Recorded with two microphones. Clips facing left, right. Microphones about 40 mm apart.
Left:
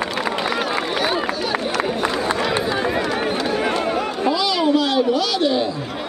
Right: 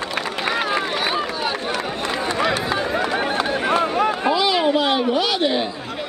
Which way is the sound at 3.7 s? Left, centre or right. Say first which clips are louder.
Right 2 dB; centre.